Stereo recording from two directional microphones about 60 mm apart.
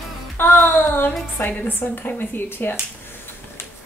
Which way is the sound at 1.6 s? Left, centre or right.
Left.